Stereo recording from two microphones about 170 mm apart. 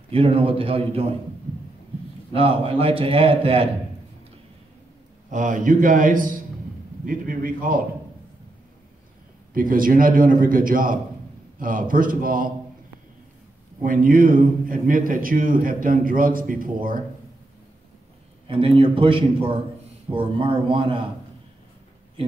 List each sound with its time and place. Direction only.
0.1 s a man's voice: 35° right (ahead or behind)
2.3 s a man's voice: 35° right (ahead or behind)
5.3 s a man's voice: 50° right (ahead or behind)
9.5 s a man's voice: 55° right (ahead or behind)
13.8 s a man's voice: 55° right (ahead or behind)
18.5 s a man's voice: 30° right (ahead or behind)